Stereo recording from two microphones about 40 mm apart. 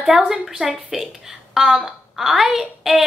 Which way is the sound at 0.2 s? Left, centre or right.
Centre.